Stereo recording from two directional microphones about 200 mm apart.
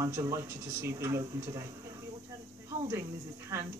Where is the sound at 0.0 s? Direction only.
15° right (ahead or behind).